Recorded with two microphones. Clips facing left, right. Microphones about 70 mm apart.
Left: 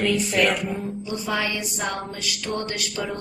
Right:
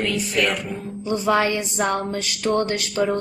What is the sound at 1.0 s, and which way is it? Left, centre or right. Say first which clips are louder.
Speech: right 6 dB; right.